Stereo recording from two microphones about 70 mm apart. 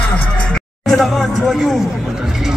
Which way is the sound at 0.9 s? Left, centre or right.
Centre.